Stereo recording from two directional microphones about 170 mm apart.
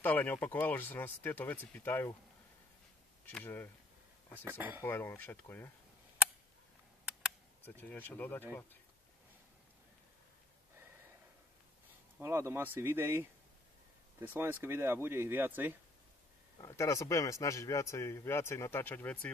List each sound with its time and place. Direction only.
0.0 s speech: 10° left (ahead or behind)
3.3 s speech: 10° left (ahead or behind)
4.5 s speech: 10° right (ahead or behind)
4.8 s speech: 15° left (ahead or behind)
7.8 s speech: 10° left (ahead or behind)
12.2 s speech: 15° right (ahead or behind)
16.6 s speech: 20° left (ahead or behind)